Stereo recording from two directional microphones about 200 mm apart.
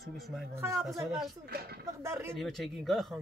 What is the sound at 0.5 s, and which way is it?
Speech, 15° right (ahead or behind).